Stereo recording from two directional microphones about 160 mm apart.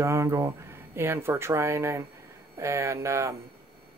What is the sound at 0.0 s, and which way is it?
Speech, 20° right (ahead or behind).